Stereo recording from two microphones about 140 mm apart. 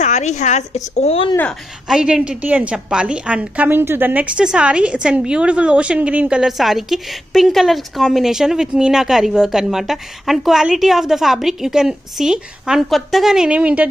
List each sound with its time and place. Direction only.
0.0 s a woman's voice: 55° left (ahead or behind)
1.5 s a woman's voice: 5° right (ahead or behind)